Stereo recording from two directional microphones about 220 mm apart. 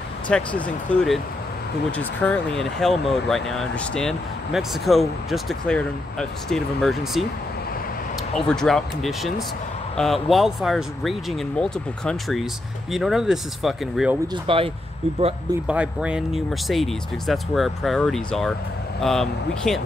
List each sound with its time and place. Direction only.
0.3 s speech: 5° left (ahead or behind)
8.4 s speech: 5° left (ahead or behind)
14.2 s speech: 20° right (ahead or behind)
15.6 s speech: 5° right (ahead or behind)